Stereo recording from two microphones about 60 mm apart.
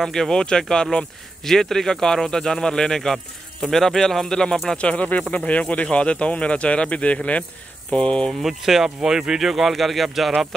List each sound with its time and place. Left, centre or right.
0.0 s speech: centre
8.3 s speech: centre